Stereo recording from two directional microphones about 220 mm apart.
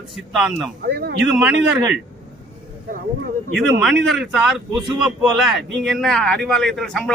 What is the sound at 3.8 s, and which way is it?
A man's voice, centre (ahead or behind).